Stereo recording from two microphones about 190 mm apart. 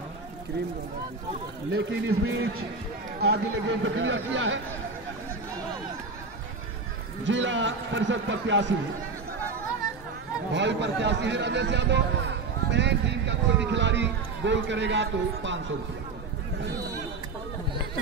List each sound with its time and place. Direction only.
1.7 s speech: 80° right
3.2 s speech: 65° right (ahead or behind); by 4.6 s 85° right
7.2 s a man's voice: 80° right
10.5 s a man's voice: 70° right (ahead or behind)